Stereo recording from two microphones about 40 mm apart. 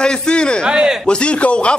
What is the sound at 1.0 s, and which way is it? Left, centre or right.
Speech, left.